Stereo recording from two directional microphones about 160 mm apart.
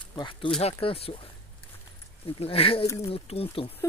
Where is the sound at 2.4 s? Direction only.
35° left (ahead or behind).